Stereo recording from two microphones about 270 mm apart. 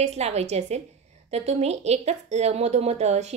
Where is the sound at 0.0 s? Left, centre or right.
Right.